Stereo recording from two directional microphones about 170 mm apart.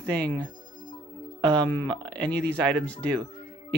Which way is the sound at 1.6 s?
10° left (ahead or behind).